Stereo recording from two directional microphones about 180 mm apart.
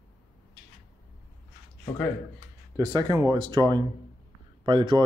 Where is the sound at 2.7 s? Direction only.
20° right (ahead or behind).